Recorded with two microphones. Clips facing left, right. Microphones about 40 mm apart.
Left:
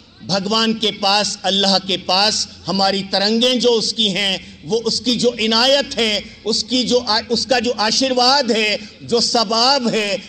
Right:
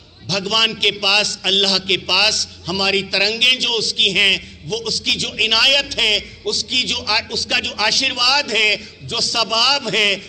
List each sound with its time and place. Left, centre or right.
0.3 s a man's voice: right
1.0 s a man's voice: right
5.3 s a man's voice: centre